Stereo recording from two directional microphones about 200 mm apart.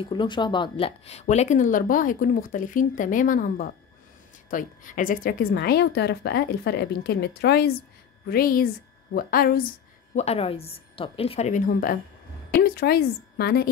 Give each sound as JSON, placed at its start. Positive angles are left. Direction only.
{"t": 0.0, "sound": "a woman's voice", "side_deg": 25}
{"t": 10.1, "sound": "speech", "side_deg": 30}